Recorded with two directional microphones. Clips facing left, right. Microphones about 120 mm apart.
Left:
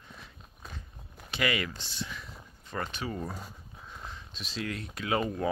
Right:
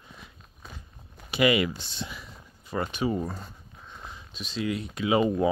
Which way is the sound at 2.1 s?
5° right (ahead or behind).